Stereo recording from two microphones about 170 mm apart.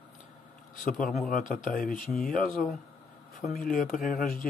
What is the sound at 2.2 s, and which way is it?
Speech, 50° left (ahead or behind).